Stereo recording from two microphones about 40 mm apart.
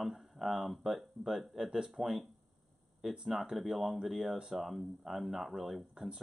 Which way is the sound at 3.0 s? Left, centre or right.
Centre.